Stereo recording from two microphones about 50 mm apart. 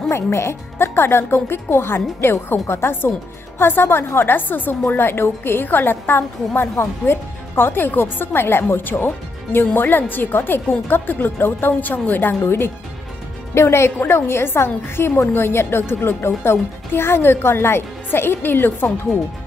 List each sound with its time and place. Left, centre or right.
0.1 s a woman's voice: left
4.8 s a woman's voice: left